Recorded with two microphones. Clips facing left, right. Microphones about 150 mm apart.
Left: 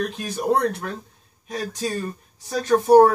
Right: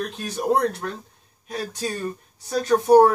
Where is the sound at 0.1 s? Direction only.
5° left (ahead or behind).